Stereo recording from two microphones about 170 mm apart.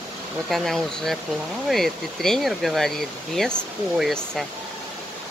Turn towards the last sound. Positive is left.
turn(degrees=0)  # may be behind; listen again after turning